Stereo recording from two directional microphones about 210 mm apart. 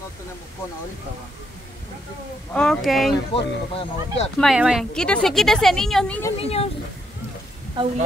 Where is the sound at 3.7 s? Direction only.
30° left (ahead or behind).